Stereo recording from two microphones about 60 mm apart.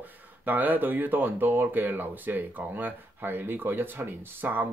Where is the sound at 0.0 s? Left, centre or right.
Right.